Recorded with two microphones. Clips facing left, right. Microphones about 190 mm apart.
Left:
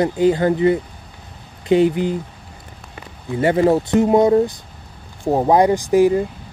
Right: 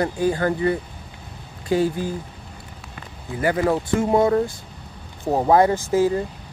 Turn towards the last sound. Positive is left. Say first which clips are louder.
# left 5 dB
turn(degrees=15)  # may be behind; listen again after turning